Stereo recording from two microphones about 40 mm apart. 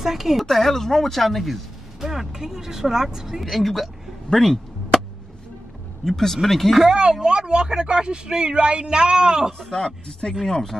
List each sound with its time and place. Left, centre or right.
0.0 s speech: centre
0.5 s speech: centre
3.4 s a sound: centre
6.0 s speech: centre
7.0 s speech: right
9.5 s speech: centre